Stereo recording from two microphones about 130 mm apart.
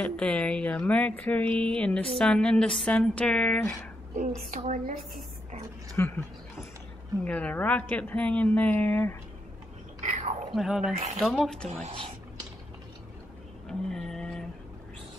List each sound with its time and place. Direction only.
0.0 s speech: 10° left (ahead or behind)
4.1 s a woman's voice: 65° right (ahead or behind); by 5.6 s 85° right
5.9 s speech: 15° left (ahead or behind)
7.2 s speech: 10° left (ahead or behind)
10.5 s speech: centre (ahead or behind)
11.9 s whispering: 45° right (ahead or behind)
13.7 s a sound: 5° left (ahead or behind)